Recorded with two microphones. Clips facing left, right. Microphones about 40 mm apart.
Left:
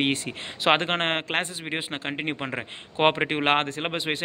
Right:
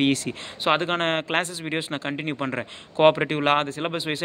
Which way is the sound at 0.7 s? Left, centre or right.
Left.